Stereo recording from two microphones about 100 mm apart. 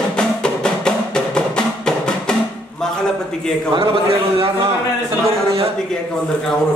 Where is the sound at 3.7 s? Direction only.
65° right (ahead or behind).